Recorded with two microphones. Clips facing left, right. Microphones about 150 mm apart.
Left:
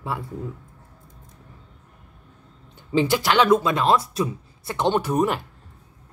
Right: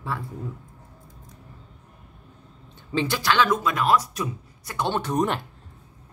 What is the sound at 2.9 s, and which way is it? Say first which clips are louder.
Speech: left 4 dB; 20° left (ahead or behind).